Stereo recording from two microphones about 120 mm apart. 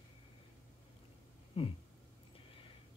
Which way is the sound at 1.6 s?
55° left (ahead or behind).